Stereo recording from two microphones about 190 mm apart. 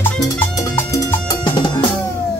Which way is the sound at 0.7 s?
15° left (ahead or behind).